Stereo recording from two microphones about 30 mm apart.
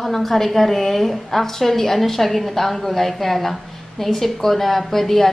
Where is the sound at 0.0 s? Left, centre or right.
Centre.